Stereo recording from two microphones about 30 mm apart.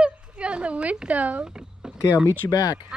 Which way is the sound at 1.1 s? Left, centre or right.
Right.